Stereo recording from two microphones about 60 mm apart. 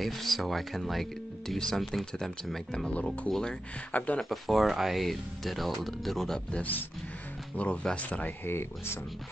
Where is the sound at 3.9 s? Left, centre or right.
Left.